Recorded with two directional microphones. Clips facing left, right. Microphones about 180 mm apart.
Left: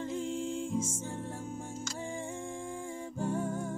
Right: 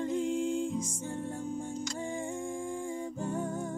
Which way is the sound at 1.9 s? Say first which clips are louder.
Right 3 dB; 5° left (ahead or behind).